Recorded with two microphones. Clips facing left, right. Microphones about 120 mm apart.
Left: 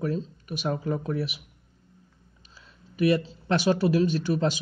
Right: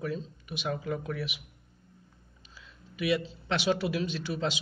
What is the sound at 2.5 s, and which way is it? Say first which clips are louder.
A man's voice: left 9 dB; 40° left (ahead or behind).